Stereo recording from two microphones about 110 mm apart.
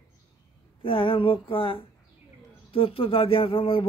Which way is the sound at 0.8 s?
55° left (ahead or behind).